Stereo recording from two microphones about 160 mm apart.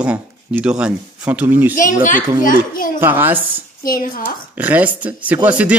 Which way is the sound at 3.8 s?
60° left (ahead or behind).